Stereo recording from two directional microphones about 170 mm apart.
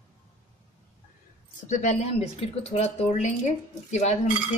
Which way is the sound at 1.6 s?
45° left (ahead or behind).